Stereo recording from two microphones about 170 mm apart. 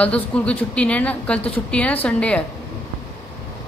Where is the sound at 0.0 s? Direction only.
5° left (ahead or behind).